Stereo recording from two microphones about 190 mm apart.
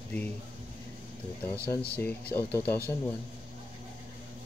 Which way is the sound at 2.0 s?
10° left (ahead or behind).